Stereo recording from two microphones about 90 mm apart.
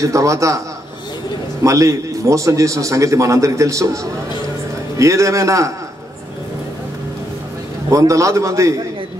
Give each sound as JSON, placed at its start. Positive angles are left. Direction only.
{"t": 0.0, "sound": "a man's voice", "side_deg": -35}
{"t": 1.6, "sound": "a man's voice", "side_deg": -35}
{"t": 7.9, "sound": "a man's voice", "side_deg": -35}